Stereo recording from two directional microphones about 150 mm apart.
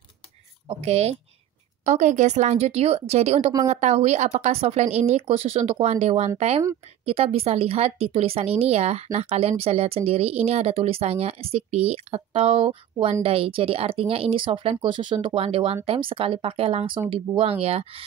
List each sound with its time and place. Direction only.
0.7 s speech: 45° right (ahead or behind)